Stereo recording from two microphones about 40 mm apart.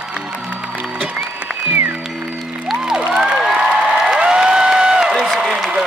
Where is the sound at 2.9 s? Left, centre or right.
Centre.